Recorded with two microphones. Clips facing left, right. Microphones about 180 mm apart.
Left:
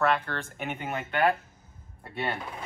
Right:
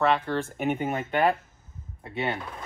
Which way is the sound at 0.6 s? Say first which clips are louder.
Right 5 dB; 45° right (ahead or behind).